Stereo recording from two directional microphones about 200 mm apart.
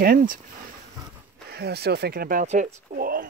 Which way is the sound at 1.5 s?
55° right (ahead or behind).